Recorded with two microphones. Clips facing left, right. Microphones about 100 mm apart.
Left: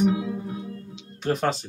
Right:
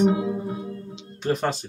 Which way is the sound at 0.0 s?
35° right (ahead or behind).